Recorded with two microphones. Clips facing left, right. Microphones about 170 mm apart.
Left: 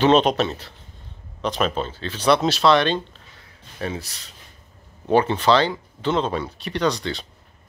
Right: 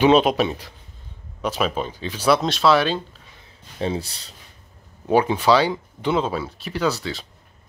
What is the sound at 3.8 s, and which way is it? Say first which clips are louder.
Speech: right 4 dB; 30° right (ahead or behind).